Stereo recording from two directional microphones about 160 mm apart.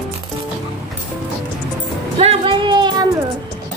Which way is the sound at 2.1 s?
35° right (ahead or behind).